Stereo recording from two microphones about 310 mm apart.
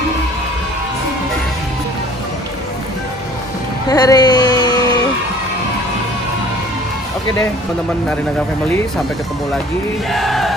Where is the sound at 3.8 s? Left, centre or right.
Centre.